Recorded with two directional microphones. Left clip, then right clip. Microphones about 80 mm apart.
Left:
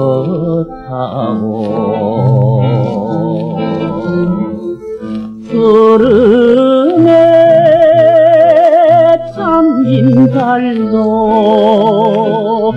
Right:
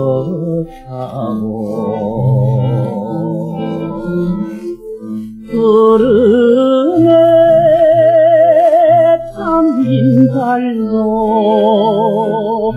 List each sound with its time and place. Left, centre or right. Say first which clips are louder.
1.8 s music: left 4 dB; left
4.1 s music: left 2 dB; left
5.5 s music: left 2 dB; left